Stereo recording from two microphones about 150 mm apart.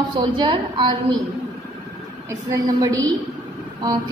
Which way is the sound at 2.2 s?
25° right (ahead or behind).